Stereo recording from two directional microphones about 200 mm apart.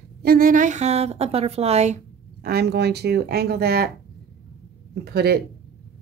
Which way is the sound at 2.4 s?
55° right (ahead or behind).